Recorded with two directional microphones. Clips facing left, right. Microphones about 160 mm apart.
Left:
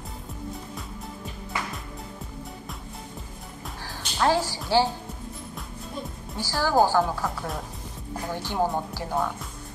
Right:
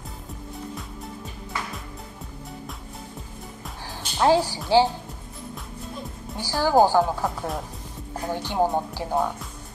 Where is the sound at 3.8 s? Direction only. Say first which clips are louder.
Right 3 dB; 15° right (ahead or behind).